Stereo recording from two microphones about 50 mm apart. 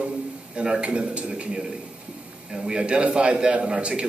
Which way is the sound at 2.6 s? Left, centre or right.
Centre.